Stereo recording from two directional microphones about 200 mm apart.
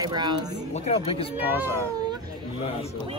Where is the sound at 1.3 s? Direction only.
10° right (ahead or behind).